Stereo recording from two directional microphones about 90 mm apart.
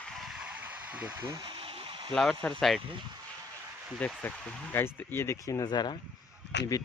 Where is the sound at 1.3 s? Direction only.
75° right (ahead or behind).